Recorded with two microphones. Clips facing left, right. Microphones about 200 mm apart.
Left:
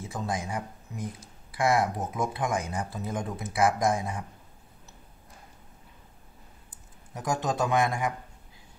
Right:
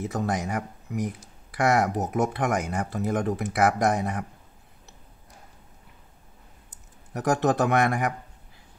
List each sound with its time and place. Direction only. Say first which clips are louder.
0.1 s speech: right 1 dB; 65° right (ahead or behind)
7.2 s speech: right 6 dB; 65° right (ahead or behind)